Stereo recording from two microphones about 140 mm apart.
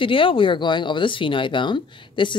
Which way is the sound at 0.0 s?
40° left (ahead or behind).